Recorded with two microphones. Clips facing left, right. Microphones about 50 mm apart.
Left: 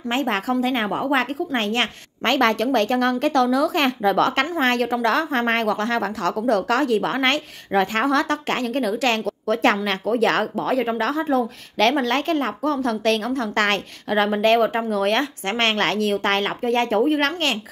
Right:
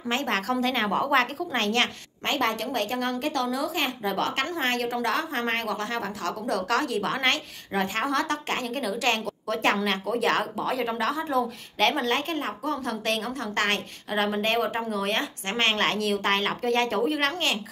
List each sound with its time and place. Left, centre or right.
0.1 s a woman's voice: left
0.7 s a woman's voice: centre
2.2 s a woman's voice: left
16.6 s speech: left